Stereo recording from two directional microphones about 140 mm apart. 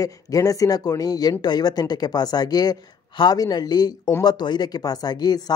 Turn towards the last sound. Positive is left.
turn(degrees=30)  # may be behind; listen again after turning